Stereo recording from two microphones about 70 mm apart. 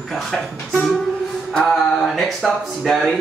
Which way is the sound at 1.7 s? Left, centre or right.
Centre.